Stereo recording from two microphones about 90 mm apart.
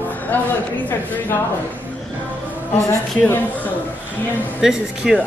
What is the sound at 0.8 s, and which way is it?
Speech, 20° left (ahead or behind).